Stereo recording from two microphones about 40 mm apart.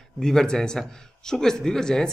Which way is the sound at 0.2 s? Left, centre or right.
Centre.